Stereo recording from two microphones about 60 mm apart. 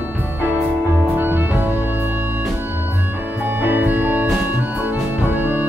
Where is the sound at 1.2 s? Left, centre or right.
Right.